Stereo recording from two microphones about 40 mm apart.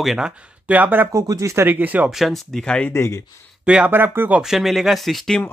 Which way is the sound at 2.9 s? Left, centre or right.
Left.